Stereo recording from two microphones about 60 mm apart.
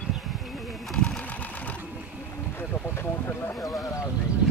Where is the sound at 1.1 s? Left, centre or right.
Left.